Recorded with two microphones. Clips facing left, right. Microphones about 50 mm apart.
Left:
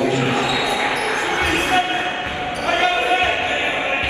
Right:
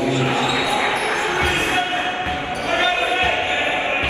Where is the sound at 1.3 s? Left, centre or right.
Left.